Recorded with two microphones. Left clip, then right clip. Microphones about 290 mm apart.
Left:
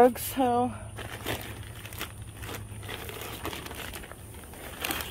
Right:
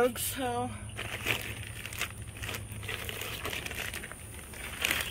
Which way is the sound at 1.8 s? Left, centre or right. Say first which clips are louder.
Right 3 dB; left.